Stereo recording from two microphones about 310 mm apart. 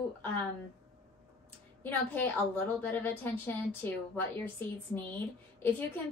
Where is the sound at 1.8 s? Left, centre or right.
Centre.